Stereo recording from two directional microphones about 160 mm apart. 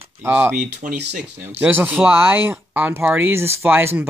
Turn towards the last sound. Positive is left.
turn(degrees=-10)  # may be behind; listen again after turning